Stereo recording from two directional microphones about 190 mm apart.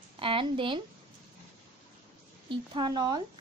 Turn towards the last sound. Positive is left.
turn(degrees=-20)  # may be behind; listen again after turning